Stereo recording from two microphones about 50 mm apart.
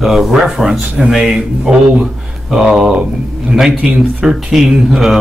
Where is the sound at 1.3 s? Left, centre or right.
Right.